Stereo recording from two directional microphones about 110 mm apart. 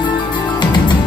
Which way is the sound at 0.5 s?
40° left (ahead or behind).